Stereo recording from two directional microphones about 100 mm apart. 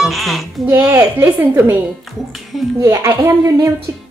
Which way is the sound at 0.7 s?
20° right (ahead or behind).